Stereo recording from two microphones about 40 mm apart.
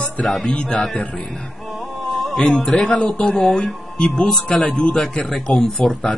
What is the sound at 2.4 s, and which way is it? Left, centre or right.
Speech, centre.